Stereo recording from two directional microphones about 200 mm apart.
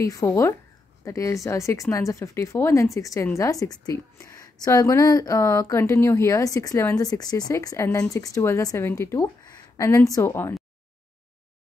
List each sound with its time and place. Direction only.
0.0 s speech: 15° left (ahead or behind)